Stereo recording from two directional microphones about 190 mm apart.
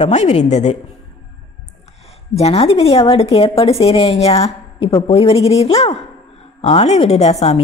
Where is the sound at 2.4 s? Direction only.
30° left (ahead or behind).